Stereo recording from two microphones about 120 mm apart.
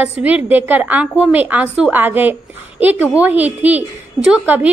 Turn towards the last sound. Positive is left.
turn(degrees=-10)  # may be behind; listen again after turning